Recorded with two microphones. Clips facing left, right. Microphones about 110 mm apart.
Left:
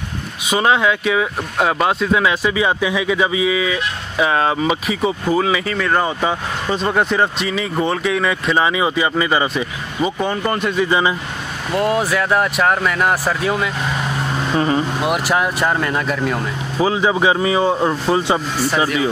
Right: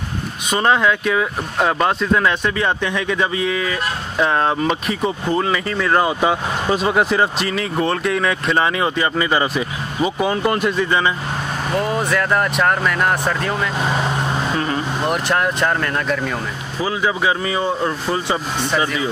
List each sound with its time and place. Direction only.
0.5 s speech: 5° left (ahead or behind)
10.9 s speech: 15° left (ahead or behind)
11.8 s speech: 5° left (ahead or behind)
15.0 s speech: 5° left (ahead or behind)
16.8 s speech: 20° left (ahead or behind)
18.6 s speech: 5° left (ahead or behind)